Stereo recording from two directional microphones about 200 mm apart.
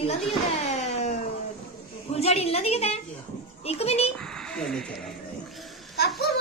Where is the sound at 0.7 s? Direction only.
35° left (ahead or behind).